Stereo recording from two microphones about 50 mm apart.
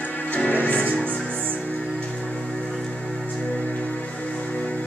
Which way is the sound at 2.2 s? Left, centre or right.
Centre.